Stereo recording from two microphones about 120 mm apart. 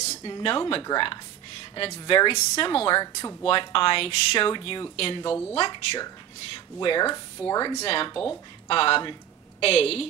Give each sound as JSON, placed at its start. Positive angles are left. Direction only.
{"t": 0.2, "sound": "speech", "side_deg": 50}
{"t": 3.0, "sound": "speech", "side_deg": 25}
{"t": 3.4, "sound": "speech", "side_deg": 45}
{"t": 7.8, "sound": "a woman's voice", "side_deg": 50}